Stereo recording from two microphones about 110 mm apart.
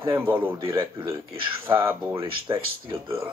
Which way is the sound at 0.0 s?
20° right (ahead or behind).